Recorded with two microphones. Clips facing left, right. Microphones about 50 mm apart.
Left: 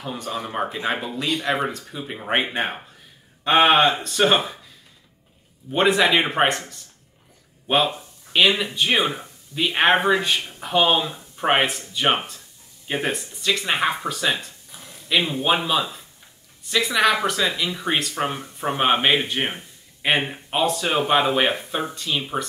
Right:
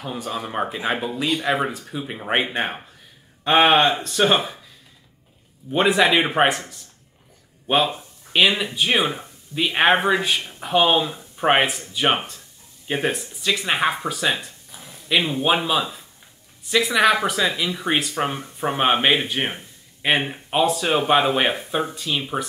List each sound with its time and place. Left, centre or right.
0.0 s speech: centre
5.7 s speech: centre